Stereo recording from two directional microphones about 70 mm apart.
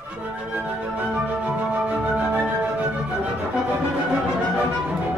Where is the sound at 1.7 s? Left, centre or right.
Right.